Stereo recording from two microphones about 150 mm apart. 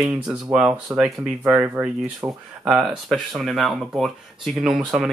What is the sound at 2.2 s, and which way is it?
Speech, 20° right (ahead or behind).